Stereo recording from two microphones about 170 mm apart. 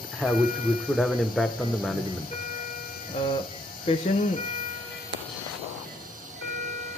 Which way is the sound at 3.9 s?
30° left (ahead or behind).